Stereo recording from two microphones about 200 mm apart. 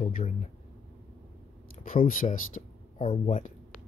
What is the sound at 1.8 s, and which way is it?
Speech, 45° left (ahead or behind).